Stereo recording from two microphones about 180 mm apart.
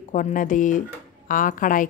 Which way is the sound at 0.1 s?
45° left (ahead or behind).